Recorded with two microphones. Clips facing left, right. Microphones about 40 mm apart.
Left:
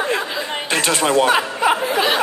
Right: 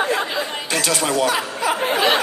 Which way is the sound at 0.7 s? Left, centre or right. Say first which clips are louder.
Left 4 dB; left.